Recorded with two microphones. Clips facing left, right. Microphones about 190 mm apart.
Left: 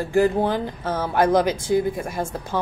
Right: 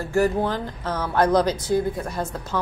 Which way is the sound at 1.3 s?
25° left (ahead or behind).